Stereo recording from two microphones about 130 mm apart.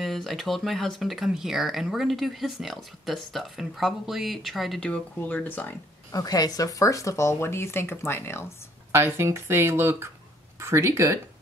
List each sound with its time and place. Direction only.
0.0 s speech: centre (ahead or behind)
6.1 s speech: 30° left (ahead or behind)
8.9 s speech: 20° right (ahead or behind)